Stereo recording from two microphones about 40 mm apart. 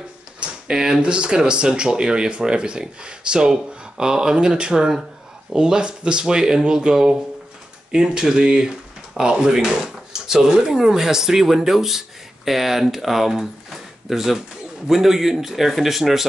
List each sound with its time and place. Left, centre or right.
0.4 s typing: right
1.0 s speech: right; by 16.3 s centre